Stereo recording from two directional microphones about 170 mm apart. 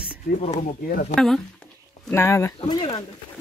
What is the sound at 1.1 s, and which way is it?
Speech, centre (ahead or behind).